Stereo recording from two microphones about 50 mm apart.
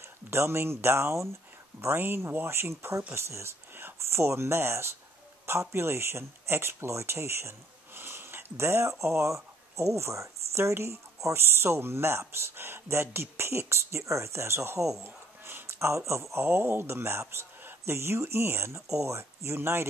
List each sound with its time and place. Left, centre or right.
0.0 s speech: right
2.0 s speech: right
3.2 s speech: right
3.7 s speech: right
15.0 s a sound: right
15.8 s speech: right